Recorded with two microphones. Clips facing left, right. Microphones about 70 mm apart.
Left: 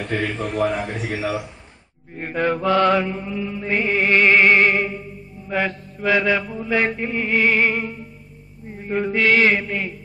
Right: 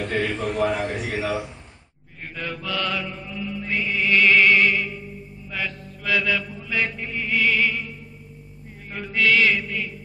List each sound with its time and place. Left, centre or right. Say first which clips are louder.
0.0 s a man's voice: even; centre
2.1 s mantra: left 11 dB; left
8.7 s mantra: left 6 dB; left